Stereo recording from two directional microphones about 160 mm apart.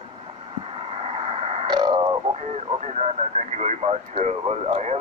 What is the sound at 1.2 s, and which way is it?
Radio, 40° right (ahead or behind).